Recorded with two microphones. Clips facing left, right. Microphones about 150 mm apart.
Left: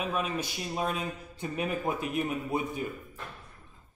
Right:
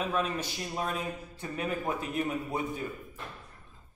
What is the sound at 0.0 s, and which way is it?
A man's voice, 10° left (ahead or behind).